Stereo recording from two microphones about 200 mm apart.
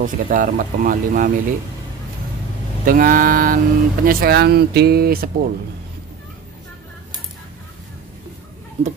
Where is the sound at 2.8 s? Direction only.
45° right (ahead or behind).